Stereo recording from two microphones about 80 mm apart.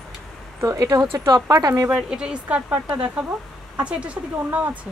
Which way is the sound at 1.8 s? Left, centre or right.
Centre.